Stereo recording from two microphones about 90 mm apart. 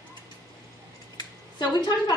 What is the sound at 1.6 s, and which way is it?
Speech, 50° left (ahead or behind).